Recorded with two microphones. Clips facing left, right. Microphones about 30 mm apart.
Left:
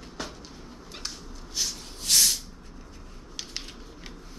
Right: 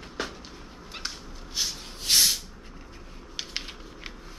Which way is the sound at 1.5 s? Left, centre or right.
Right.